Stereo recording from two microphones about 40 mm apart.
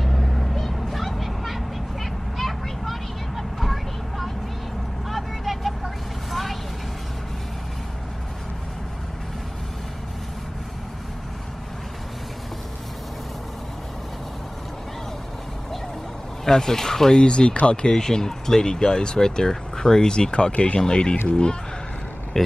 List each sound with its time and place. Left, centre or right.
0.0 s vehicle: centre
16.4 s speech: centre
17.2 s speech: left
17.9 s speech: centre